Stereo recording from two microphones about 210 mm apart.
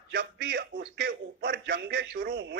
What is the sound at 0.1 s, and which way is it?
A man's voice, 50° right (ahead or behind).